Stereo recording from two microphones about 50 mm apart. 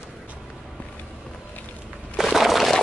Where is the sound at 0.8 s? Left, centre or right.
Left.